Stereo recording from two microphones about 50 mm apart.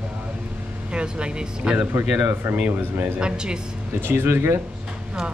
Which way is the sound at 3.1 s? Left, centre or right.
Centre.